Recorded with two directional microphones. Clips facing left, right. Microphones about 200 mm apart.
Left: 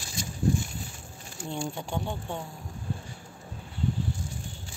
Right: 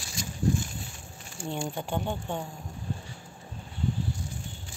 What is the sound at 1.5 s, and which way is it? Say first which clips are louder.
Speech: right 1 dB; centre (ahead or behind).